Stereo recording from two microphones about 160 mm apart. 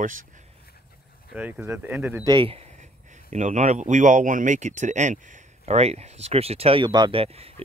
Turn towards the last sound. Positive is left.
turn(degrees=-40)  # may be behind; listen again after turning